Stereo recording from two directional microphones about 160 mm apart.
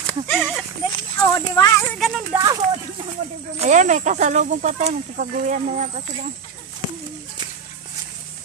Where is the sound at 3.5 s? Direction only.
50° right (ahead or behind).